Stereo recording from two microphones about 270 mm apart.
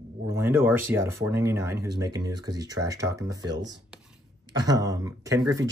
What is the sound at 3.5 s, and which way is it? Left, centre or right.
Speech, right.